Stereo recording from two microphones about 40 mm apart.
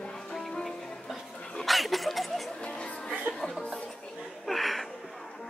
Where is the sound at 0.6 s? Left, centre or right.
Centre.